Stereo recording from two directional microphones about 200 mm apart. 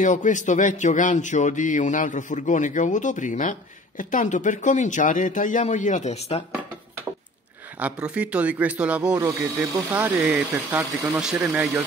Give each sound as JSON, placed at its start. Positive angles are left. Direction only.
{"t": 0.0, "sound": "speech", "side_deg": 40}
{"t": 7.8, "sound": "speech", "side_deg": -5}
{"t": 9.1, "sound": "speech", "side_deg": -15}